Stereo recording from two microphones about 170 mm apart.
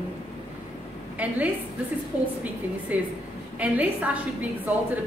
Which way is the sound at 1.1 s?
10° right (ahead or behind).